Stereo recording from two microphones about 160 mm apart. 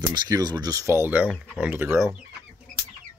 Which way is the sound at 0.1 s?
25° right (ahead or behind).